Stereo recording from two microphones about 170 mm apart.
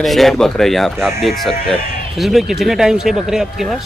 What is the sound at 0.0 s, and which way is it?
A man's voice, centre (ahead or behind).